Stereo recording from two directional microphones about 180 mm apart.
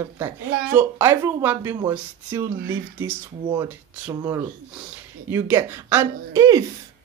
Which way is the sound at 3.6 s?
15° right (ahead or behind).